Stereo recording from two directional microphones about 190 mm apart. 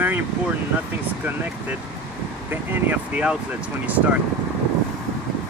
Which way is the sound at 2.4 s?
10° right (ahead or behind).